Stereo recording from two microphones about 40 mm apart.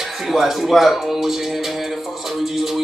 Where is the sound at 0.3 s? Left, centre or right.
Centre.